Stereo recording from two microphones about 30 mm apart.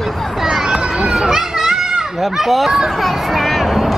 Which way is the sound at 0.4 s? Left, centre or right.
Centre.